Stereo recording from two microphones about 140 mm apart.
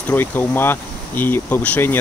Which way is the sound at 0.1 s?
15° left (ahead or behind).